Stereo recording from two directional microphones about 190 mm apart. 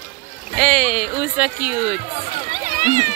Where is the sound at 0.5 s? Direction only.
5° left (ahead or behind).